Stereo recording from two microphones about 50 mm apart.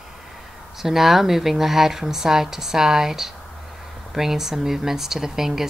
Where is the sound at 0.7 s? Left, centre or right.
Centre.